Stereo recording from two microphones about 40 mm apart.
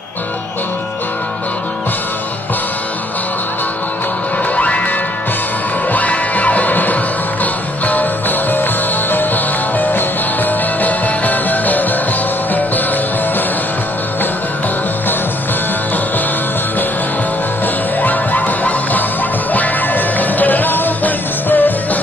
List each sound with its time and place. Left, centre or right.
4.6 s music: left
18.0 s music: left